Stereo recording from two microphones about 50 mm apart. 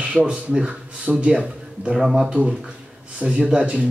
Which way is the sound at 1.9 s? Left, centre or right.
Centre.